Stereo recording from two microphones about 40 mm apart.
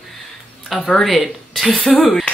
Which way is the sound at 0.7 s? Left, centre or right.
Left.